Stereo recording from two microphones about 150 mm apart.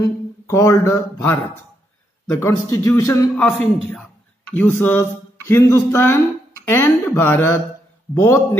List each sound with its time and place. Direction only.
0.0 s a man's voice: 20° left (ahead or behind)
3.3 s speech: 10° left (ahead or behind)